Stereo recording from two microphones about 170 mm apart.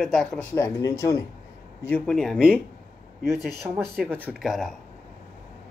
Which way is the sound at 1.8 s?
5° left (ahead or behind).